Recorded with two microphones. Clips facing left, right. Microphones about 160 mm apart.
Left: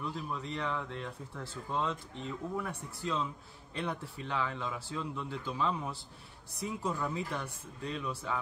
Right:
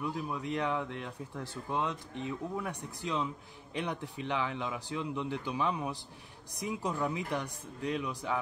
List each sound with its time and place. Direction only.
0.0 s speech: 15° right (ahead or behind)